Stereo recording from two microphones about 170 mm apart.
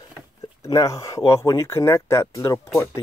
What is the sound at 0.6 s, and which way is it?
Speech, 20° left (ahead or behind).